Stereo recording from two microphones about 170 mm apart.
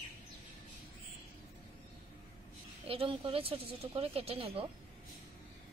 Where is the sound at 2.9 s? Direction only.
30° right (ahead or behind).